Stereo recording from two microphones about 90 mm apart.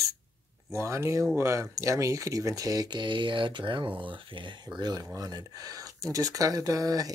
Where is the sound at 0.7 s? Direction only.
35° right (ahead or behind).